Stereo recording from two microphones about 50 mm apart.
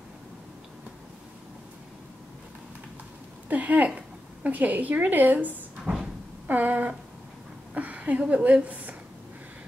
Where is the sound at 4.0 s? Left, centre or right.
Right.